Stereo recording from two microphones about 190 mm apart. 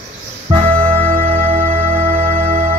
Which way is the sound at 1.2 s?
30° right (ahead or behind).